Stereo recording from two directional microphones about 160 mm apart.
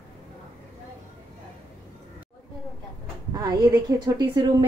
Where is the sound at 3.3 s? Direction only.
20° right (ahead or behind).